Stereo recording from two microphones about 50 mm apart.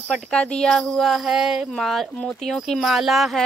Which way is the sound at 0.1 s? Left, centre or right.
Centre.